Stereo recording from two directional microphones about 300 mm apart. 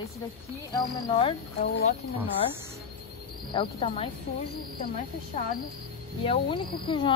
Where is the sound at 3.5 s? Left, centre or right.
Centre.